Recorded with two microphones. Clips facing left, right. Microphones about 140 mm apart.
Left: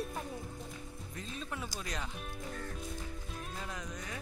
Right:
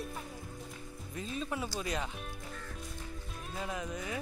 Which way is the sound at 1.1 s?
5° right (ahead or behind).